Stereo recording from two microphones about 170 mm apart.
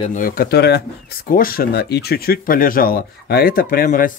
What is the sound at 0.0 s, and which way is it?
Speech, 50° left (ahead or behind).